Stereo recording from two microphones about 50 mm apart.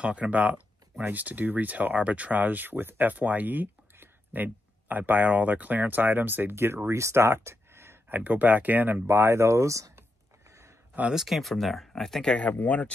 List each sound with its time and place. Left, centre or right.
0.0 s speech: right
6.5 s speech: right
8.1 s speech: right
9.0 s speech: right
11.1 s speech: centre
12.6 s speech: left